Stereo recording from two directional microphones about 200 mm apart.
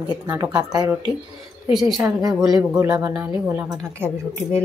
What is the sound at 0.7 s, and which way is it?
Speech, 20° right (ahead or behind).